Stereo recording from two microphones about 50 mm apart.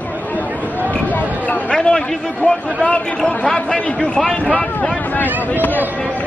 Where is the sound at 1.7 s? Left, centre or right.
Centre.